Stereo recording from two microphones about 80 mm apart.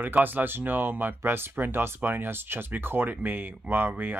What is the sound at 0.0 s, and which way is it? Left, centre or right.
Speech, right.